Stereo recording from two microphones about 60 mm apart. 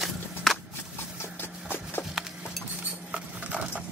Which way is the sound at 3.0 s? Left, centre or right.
Centre.